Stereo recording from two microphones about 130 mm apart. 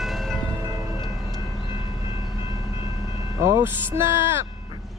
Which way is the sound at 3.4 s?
20° right (ahead or behind).